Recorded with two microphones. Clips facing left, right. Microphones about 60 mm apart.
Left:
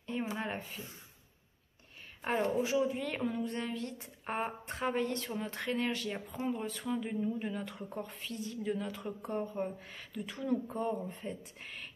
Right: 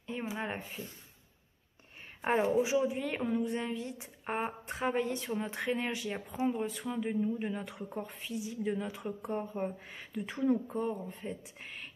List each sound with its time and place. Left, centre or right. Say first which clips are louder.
0.3 s speech: even; centre
2.2 s a woman's voice: right 3 dB; centre
11.1 s a woman's voice: right 1 dB; centre